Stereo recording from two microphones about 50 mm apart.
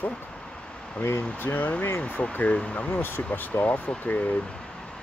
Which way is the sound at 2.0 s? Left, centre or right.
Left.